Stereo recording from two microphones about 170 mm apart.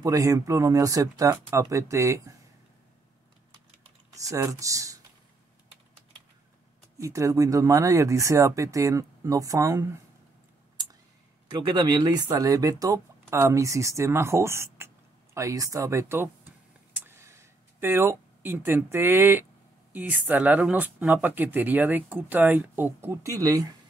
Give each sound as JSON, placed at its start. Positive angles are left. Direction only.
{"t": 0.0, "sound": "speech", "side_deg": -20}
{"t": 4.1, "sound": "speech", "side_deg": -20}
{"t": 7.0, "sound": "speech", "side_deg": -20}
{"t": 10.8, "sound": "a sound", "side_deg": -25}
{"t": 11.5, "sound": "speech", "side_deg": -25}
{"t": 15.3, "sound": "a sound", "side_deg": -20}
{"t": 19.9, "sound": "speech", "side_deg": -10}